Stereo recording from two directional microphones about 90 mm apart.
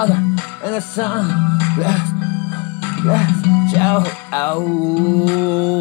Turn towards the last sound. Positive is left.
turn(degrees=35)  # may be behind; listen again after turning